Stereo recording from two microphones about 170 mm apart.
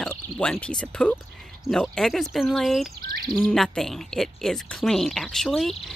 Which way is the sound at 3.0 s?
60° right (ahead or behind).